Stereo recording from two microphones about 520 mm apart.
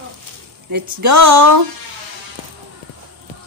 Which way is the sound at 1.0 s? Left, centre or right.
Right.